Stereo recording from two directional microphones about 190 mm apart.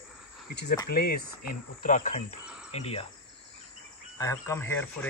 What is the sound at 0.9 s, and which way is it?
Speech, 50° left (ahead or behind).